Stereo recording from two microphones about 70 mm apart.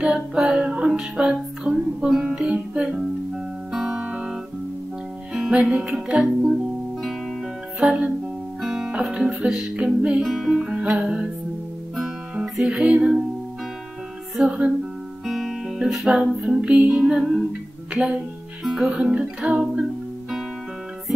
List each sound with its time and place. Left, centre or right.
0.0 s music: centre
0.8 s music: centre
5.6 s music: centre
6.4 s music: centre
10.2 s speech: centre
10.5 s music: centre
15.2 s music: centre